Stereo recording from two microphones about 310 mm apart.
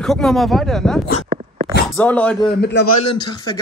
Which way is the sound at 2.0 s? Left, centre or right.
Centre.